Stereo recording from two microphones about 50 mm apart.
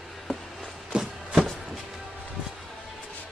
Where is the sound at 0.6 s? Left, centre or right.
Centre.